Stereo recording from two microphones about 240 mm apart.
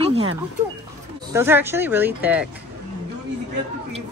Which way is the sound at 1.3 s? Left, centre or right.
Centre.